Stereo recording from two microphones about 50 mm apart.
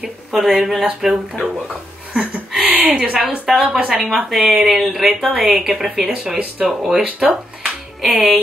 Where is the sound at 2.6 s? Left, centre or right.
Right.